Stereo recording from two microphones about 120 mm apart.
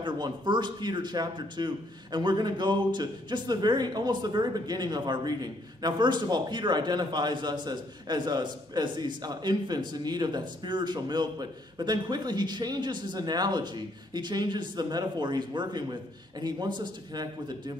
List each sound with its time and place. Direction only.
0.0 s speech: 40° right (ahead or behind)